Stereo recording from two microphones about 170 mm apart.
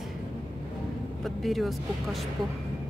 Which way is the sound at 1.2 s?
Centre (ahead or behind).